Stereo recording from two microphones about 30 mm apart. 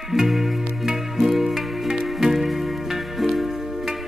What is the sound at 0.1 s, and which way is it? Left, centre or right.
Music, centre.